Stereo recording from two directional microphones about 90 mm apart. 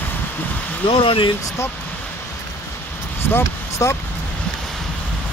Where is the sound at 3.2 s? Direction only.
25° left (ahead or behind).